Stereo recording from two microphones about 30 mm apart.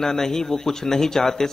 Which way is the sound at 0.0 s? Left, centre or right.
Centre.